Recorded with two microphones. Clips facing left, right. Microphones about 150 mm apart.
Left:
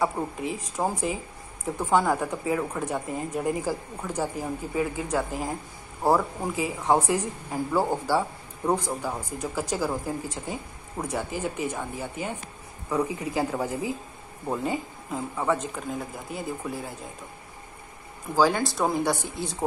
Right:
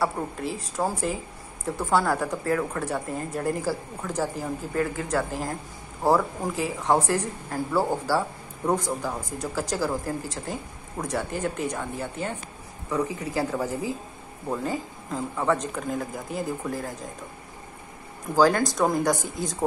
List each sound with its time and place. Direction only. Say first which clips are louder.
0.0 s speech: even; 15° left (ahead or behind)
18.3 s a woman's voice: right 2 dB; 5° left (ahead or behind)
19.1 s a woman's voice: right 2 dB; 45° right (ahead or behind)